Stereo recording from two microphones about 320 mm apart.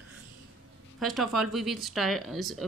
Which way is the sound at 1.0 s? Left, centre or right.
Centre.